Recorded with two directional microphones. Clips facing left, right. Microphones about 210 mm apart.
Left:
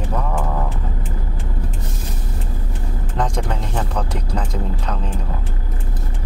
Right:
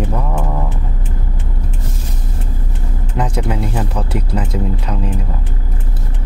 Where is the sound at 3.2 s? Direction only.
5° right (ahead or behind).